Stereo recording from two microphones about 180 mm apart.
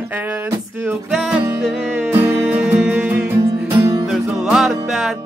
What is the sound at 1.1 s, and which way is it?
Music, 5° right (ahead or behind).